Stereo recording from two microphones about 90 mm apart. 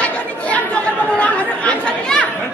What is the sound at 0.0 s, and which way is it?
Chatter, 15° left (ahead or behind).